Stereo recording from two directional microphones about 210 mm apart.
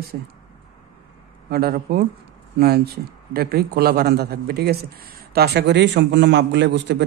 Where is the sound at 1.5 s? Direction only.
45° right (ahead or behind).